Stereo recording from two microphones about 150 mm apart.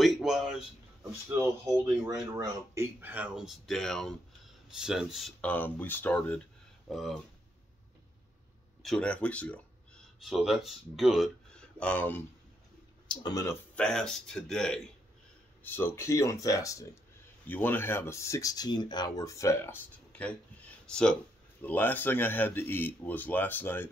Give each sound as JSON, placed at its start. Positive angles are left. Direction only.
{"t": 0.0, "sound": "a sound", "side_deg": 0}
{"t": 2.0, "sound": "speech", "side_deg": -20}
{"t": 8.8, "sound": "speech", "side_deg": 5}
{"t": 13.1, "sound": "speech", "side_deg": 25}
{"t": 13.7, "sound": "speech", "side_deg": 5}
{"t": 15.6, "sound": "speech", "side_deg": 15}